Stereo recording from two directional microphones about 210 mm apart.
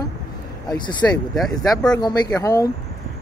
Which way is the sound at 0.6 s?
20° left (ahead or behind).